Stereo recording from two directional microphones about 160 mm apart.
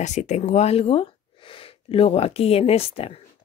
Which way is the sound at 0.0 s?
45° left (ahead or behind).